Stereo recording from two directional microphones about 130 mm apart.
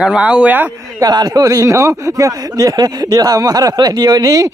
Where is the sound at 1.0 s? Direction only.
30° right (ahead or behind).